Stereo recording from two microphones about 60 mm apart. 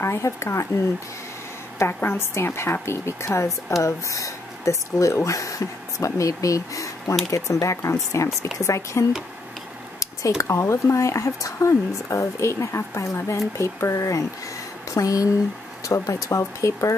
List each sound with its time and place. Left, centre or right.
0.0 s a woman's voice: left
1.8 s a woman's voice: left
3.3 s speech: left
10.2 s speech: left